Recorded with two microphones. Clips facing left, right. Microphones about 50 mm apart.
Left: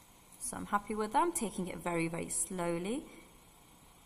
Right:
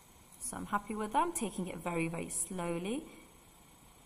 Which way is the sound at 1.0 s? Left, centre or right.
Left.